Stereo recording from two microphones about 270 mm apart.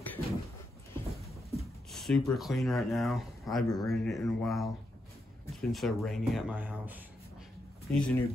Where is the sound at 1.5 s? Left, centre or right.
Centre.